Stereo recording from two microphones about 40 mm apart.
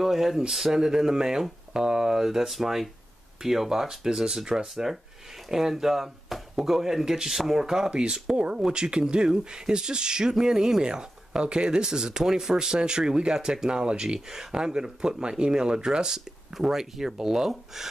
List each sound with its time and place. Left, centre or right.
0.0 s speech: centre
0.8 s speech: centre
7.9 s speech: right; by 17.8 s centre